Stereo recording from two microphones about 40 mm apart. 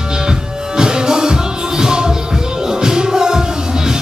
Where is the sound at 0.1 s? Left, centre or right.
Centre.